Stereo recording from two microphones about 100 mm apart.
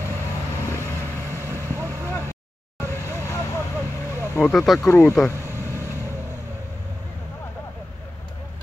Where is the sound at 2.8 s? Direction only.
25° left (ahead or behind).